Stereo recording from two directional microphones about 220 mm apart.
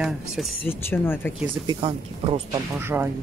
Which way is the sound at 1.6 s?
25° right (ahead or behind).